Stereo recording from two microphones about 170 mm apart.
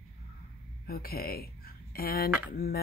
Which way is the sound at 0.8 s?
60° left (ahead or behind).